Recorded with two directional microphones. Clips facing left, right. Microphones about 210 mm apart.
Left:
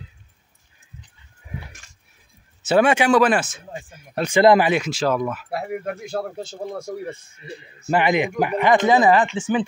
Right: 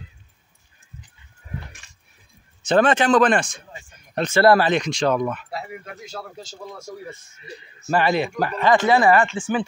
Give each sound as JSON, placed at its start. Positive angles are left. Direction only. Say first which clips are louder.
{"t": 2.6, "sound": "speech", "louder": "left 1 dB", "side_deg": 10}
{"t": 5.5, "sound": "speech", "louder": "left 7 dB", "side_deg": 55}
{"t": 7.9, "sound": "speech", "louder": "left 1 dB", "side_deg": 15}